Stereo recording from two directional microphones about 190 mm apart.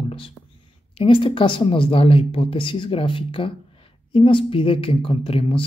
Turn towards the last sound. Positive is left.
turn(degrees=30)  # may be behind; listen again after turning